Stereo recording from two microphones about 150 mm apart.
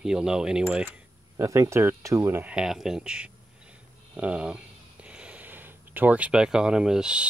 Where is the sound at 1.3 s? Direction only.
20° right (ahead or behind).